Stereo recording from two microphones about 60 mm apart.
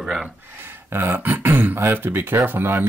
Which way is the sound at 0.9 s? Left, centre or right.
Right.